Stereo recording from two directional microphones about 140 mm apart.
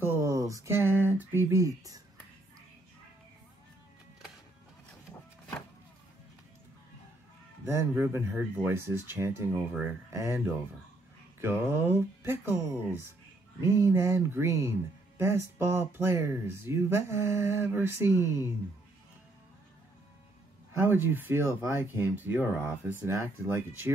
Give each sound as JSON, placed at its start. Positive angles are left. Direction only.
{"t": 0.0, "sound": "a sound", "side_deg": -20}
{"t": 7.6, "sound": "speech", "side_deg": -15}
{"t": 13.7, "sound": "speech", "side_deg": -20}
{"t": 20.7, "sound": "speech", "side_deg": -15}